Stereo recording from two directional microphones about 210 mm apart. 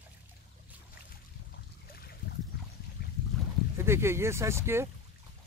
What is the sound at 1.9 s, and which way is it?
Boat, 45° left (ahead or behind).